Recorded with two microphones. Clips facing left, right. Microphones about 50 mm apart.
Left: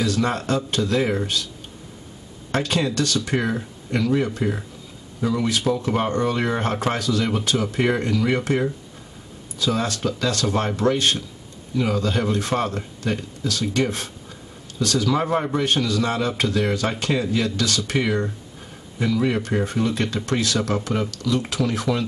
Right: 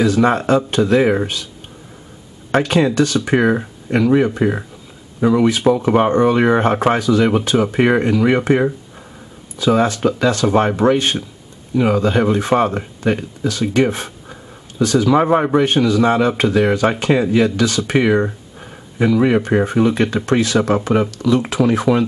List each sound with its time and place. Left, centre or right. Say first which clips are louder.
0.0 s speech: right 8 dB; right
2.5 s speech: right 8 dB; right